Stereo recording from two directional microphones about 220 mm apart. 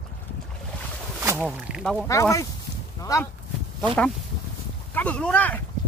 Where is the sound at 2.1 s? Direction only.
15° left (ahead or behind).